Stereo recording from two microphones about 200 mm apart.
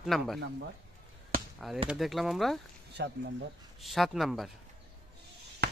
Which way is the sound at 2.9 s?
55° right (ahead or behind).